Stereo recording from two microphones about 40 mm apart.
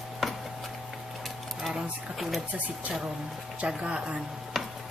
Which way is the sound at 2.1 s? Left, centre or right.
Centre.